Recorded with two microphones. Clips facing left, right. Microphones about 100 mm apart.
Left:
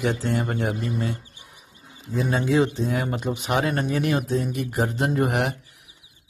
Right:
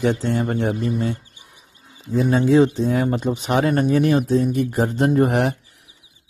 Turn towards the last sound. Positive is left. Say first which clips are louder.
# right 5 dB
turn(degrees=-35)  # may be behind; listen again after turning